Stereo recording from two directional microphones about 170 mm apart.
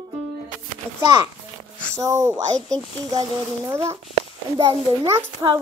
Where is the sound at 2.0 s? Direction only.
20° right (ahead or behind).